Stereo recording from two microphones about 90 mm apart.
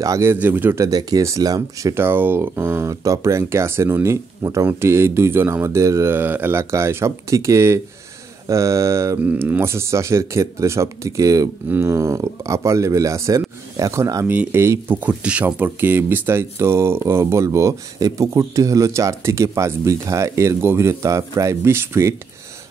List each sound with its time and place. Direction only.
0.0 s speech: 40° right (ahead or behind)
0.3 s speech: 20° right (ahead or behind)
0.8 s speech: 40° right (ahead or behind)
2.0 s speech: 25° right (ahead or behind)
2.9 s speech: 35° right (ahead or behind)
9.2 s speech: 20° right (ahead or behind); by 14.2 s 40° right (ahead or behind)
14.2 s speech: 20° right (ahead or behind)
15.0 s speech: 15° right (ahead or behind); by 22.1 s 30° right (ahead or behind)